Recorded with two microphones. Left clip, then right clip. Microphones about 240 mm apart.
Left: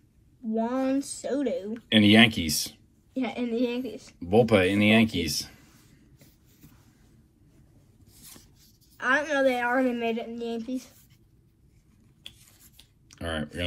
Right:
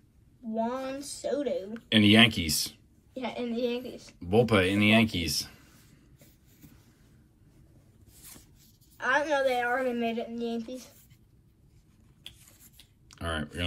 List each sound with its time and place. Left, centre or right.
0.6 s a woman's voice: left
1.7 s speech: centre
3.2 s a woman's voice: left
4.3 s speech: centre
8.9 s a woman's voice: left
13.1 s speech: centre